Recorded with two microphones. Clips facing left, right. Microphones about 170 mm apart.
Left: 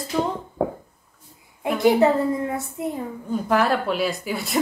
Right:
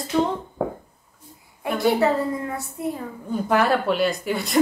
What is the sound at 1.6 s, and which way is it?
A woman's voice, 20° left (ahead or behind).